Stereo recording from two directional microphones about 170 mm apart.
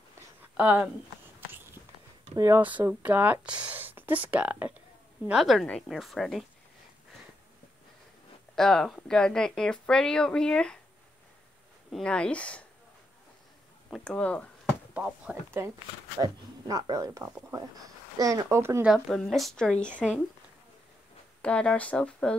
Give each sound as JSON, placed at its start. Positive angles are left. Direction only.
{"t": 0.6, "sound": "speech", "side_deg": -10}
{"t": 2.3, "sound": "speech", "side_deg": -15}
{"t": 8.5, "sound": "speech", "side_deg": 5}
{"t": 11.9, "sound": "speech", "side_deg": 5}
{"t": 13.8, "sound": "speech", "side_deg": 5}
{"t": 15.0, "sound": "speech", "side_deg": -5}
{"t": 16.2, "sound": "speech", "side_deg": -25}
{"t": 18.9, "sound": "speech", "side_deg": 5}
{"t": 21.4, "sound": "speech", "side_deg": 5}